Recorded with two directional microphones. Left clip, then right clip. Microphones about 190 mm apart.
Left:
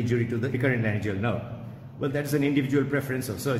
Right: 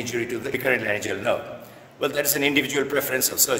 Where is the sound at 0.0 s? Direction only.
35° right (ahead or behind).